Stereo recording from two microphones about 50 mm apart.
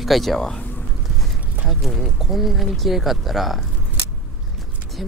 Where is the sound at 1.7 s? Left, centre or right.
Centre.